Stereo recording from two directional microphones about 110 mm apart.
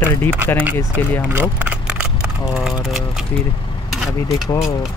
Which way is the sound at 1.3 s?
15° right (ahead or behind).